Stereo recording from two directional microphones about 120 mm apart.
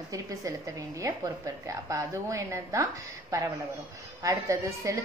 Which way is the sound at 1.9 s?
25° right (ahead or behind).